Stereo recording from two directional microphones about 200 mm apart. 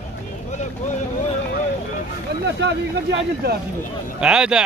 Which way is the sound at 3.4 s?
50° right (ahead or behind).